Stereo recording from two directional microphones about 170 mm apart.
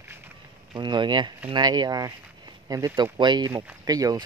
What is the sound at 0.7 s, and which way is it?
Speech, 25° right (ahead or behind).